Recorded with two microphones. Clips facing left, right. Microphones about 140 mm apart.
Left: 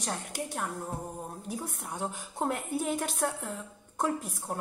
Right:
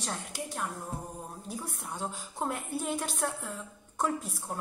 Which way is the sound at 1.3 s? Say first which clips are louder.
Left 2 dB; 55° left (ahead or behind).